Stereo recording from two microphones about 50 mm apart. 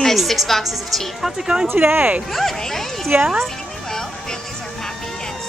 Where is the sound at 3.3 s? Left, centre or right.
Centre.